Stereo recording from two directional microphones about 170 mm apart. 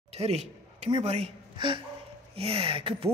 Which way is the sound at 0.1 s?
40° right (ahead or behind).